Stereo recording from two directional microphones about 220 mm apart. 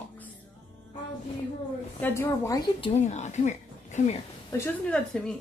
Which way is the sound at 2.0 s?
10° left (ahead or behind).